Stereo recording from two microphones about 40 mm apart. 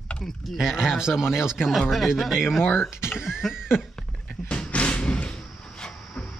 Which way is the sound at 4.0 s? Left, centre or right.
Centre.